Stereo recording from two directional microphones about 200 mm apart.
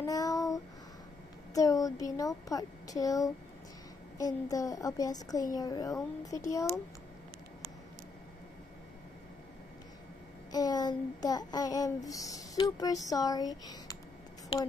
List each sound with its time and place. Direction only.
0.0 s child singing: 15° left (ahead or behind)
1.5 s a woman's voice: 15° left (ahead or behind)
10.5 s speech: 20° left (ahead or behind)